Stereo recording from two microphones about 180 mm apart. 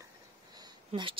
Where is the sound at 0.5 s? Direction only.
25° right (ahead or behind).